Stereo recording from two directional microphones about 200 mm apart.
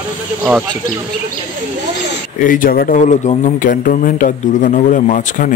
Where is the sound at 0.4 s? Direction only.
5° right (ahead or behind).